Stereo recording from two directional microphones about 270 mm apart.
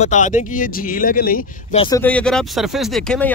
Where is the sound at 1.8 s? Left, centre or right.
Centre.